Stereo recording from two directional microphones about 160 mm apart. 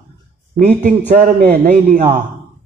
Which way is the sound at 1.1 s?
40° right (ahead or behind).